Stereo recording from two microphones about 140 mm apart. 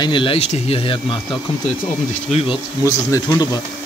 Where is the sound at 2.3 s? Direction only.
45° left (ahead or behind).